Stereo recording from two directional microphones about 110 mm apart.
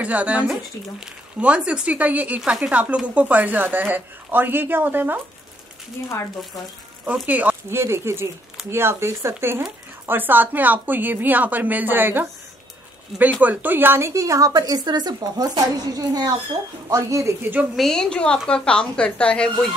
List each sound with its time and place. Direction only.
0.0 s speech: 10° right (ahead or behind)
7.1 s speech: 15° right (ahead or behind)
17.7 s speech: 5° left (ahead or behind)